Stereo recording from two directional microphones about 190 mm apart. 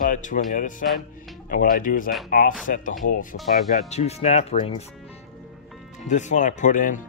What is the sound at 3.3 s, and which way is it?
Speech, 60° left (ahead or behind).